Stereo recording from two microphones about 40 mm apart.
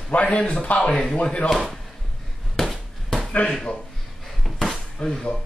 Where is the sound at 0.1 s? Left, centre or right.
Left.